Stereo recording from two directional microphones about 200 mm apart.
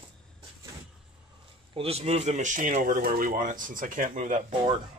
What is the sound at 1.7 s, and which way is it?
Speech, 30° right (ahead or behind).